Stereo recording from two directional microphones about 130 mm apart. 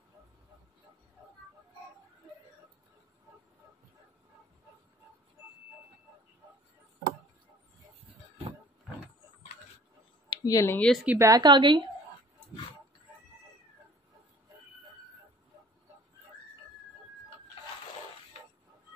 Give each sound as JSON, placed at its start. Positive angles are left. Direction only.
{"t": 10.3, "sound": "speech", "side_deg": 25}
{"t": 10.8, "sound": "speech", "side_deg": 5}
{"t": 11.1, "sound": "a woman's voice", "side_deg": -25}